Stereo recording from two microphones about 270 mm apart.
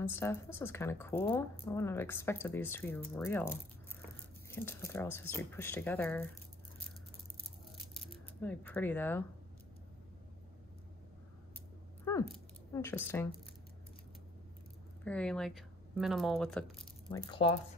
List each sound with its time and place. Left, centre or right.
0.0 s speech: centre
7.9 s coin: centre
12.0 s a sound: centre
15.0 s speech: centre
17.1 s speech: centre